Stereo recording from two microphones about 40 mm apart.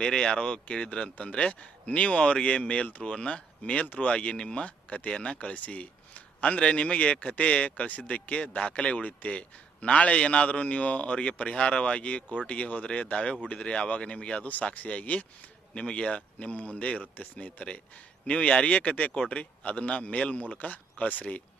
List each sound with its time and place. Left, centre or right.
0.0 s a man's voice: centre
3.8 s a man's voice: left
6.4 s a man's voice: left
14.6 s a man's voice: left
19.1 s a man's voice: left
19.6 s a man's voice: left